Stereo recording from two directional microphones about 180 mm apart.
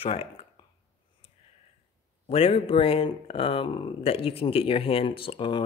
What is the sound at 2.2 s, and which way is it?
Speech, 30° left (ahead or behind).